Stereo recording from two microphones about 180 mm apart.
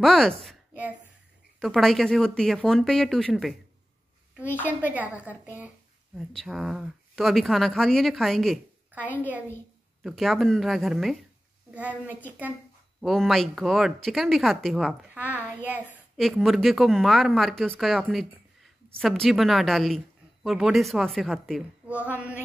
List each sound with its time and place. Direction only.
0.0 s speech: centre (ahead or behind)
0.4 s a sound: centre (ahead or behind)
1.6 s speech: centre (ahead or behind)
4.9 s a woman's voice: 10° right (ahead or behind)
12.3 s a woman's voice: 10° right (ahead or behind)
15.1 s a woman's voice: 10° right (ahead or behind)